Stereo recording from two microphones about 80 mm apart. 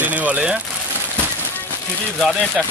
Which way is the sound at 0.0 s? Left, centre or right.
Centre.